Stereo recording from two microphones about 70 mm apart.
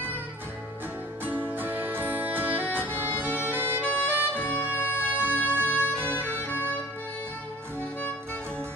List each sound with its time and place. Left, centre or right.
1.2 s music: right
3.2 s bagpipes: right
4.1 s saxophone: right
4.4 s music: left